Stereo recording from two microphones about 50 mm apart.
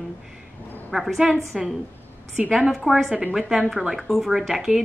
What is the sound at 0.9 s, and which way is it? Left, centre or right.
Speech, centre.